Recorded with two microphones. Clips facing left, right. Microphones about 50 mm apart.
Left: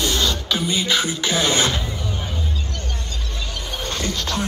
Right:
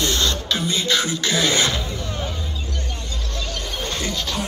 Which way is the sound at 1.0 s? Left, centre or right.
Left.